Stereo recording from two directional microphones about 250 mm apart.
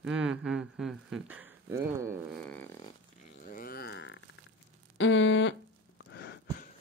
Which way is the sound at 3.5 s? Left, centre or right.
Left.